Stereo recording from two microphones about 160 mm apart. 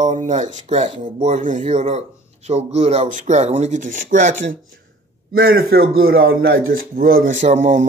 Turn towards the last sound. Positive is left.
turn(degrees=-50)  # may be behind; listen again after turning